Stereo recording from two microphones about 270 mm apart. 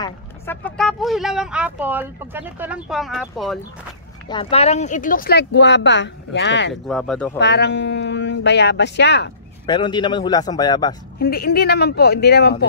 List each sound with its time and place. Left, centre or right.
0.0 s speech: centre
4.3 s speech: left
6.7 s speech: centre
7.3 s speech: left
9.7 s a man's voice: centre
11.1 s speech: left